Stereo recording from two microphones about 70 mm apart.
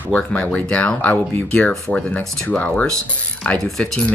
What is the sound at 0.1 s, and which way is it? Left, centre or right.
Speech, centre.